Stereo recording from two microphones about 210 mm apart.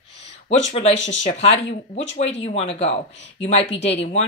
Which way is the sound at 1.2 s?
30° left (ahead or behind).